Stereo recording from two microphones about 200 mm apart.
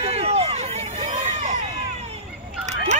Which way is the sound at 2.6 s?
35° right (ahead or behind).